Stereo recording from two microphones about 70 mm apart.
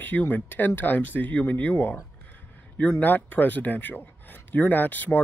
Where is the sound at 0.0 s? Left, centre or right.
Left.